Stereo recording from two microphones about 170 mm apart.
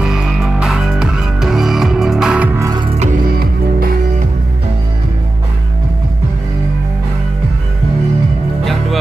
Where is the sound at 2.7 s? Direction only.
25° right (ahead or behind).